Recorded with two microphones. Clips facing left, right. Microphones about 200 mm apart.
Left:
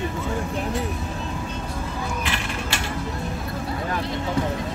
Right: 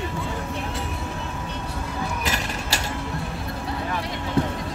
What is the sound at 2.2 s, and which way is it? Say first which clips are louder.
Mechanisms: even; 40° right (ahead or behind).